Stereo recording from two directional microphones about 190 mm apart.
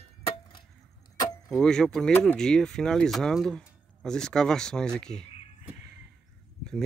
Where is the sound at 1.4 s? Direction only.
Centre (ahead or behind).